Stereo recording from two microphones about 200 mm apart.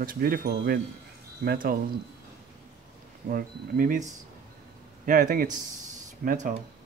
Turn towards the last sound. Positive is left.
turn(degrees=-45)  # may be behind; listen again after turning